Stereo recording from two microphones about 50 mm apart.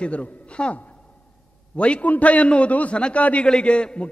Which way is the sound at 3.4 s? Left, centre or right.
Centre.